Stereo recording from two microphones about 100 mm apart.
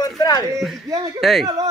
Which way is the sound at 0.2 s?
40° left (ahead or behind).